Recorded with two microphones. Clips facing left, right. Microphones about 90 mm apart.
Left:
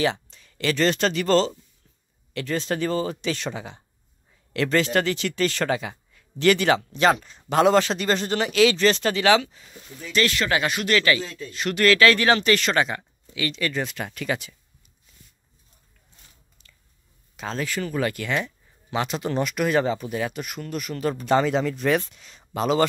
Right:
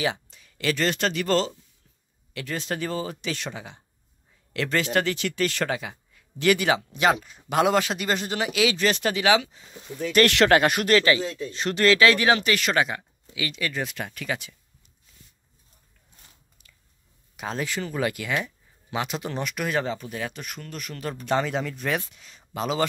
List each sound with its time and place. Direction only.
0.0 s speech: 5° right (ahead or behind)
10.1 s speech: 65° right (ahead or behind)
10.5 s speech: 50° right (ahead or behind)
11.0 s speech: 25° right (ahead or behind)
11.2 s speech: 15° right (ahead or behind)
11.5 s speech: 30° right (ahead or behind); by 14.5 s centre (ahead or behind)
16.6 s a sound: 10° right (ahead or behind)
17.4 s speech: 15° right (ahead or behind)